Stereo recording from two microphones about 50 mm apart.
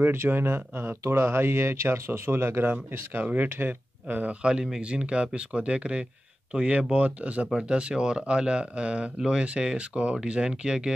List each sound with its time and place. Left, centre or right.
0.0 s speech: right
1.0 s speech: right
2.9 s speech: right
4.4 s speech: centre